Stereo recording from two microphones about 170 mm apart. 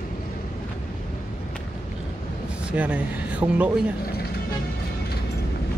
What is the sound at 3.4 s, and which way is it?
Speech, 25° right (ahead or behind).